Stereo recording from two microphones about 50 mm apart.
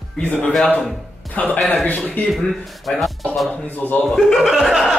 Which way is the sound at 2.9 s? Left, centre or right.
Centre.